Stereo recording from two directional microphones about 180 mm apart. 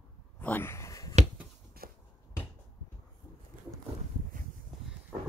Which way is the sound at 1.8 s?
55° right (ahead or behind).